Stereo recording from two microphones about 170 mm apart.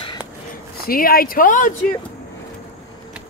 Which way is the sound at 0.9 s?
60° left (ahead or behind).